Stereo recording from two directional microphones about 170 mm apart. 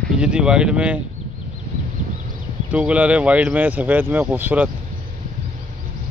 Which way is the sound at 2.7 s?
5° right (ahead or behind).